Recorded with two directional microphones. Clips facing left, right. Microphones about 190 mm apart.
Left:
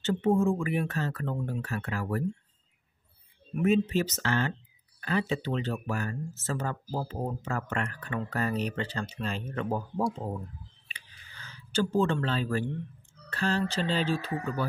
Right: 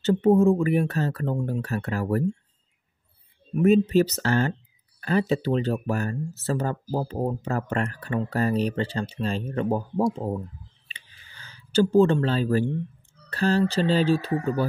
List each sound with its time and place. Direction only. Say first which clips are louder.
0.0 s speech: right 7 dB; 40° right (ahead or behind)
3.5 s speech: right 7 dB; 40° right (ahead or behind)
10.9 s a sound: right 1 dB; 30° right (ahead or behind)
13.3 s speech: right 7 dB; 35° right (ahead or behind)